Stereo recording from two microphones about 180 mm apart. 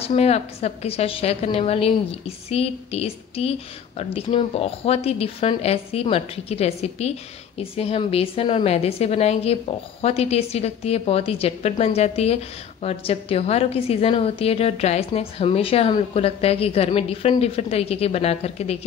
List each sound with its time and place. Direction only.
0.0 s a woman's voice: 35° left (ahead or behind)